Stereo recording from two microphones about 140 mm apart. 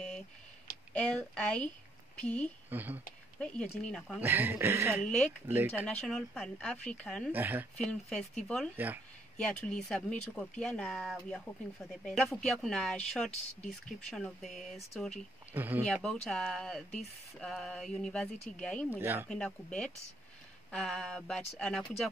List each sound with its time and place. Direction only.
0.9 s speech: 5° left (ahead or behind)
2.7 s speech: 15° right (ahead or behind)
3.3 s speech: 5° left (ahead or behind)
4.2 s speech: 15° right (ahead or behind)
5.9 s speech: 5° left (ahead or behind)
7.3 s speech: 15° right (ahead or behind)
7.7 s speech: 5° left (ahead or behind)
8.7 s speech: 15° right (ahead or behind)
9.4 s speech: 10° left (ahead or behind)
15.5 s speech: 15° right (ahead or behind)
15.8 s speech: 5° left (ahead or behind)
18.9 s speech: 15° right (ahead or behind)
19.2 s speech: 5° left (ahead or behind)